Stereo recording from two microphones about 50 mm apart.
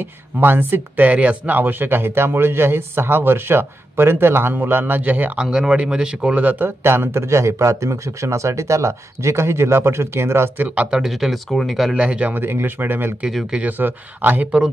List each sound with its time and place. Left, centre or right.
0.4 s speech: right
1.0 s speech: right
1.6 s speech: right
5.4 s speech: centre
6.8 s speech: right
10.6 s speech: right
10.9 s speech: centre
11.9 s speech: right
12.4 s speech: right